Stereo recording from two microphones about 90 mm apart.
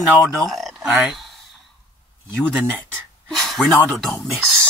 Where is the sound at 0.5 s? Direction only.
Centre (ahead or behind).